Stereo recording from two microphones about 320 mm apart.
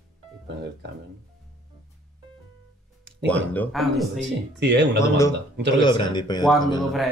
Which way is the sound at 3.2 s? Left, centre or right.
Centre.